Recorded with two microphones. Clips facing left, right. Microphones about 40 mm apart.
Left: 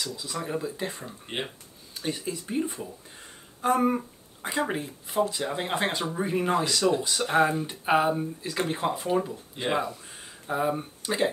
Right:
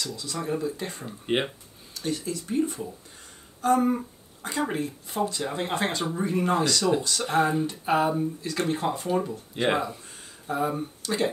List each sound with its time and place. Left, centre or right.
0.0 s speech: centre
1.3 s speech: right
2.0 s speech: centre
9.6 s speech: right
10.4 s speech: centre